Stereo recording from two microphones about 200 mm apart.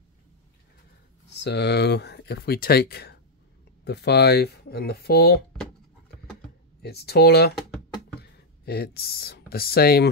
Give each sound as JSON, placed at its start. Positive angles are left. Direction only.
{"t": 1.4, "sound": "speech", "side_deg": 55}
{"t": 6.8, "sound": "speech", "side_deg": 55}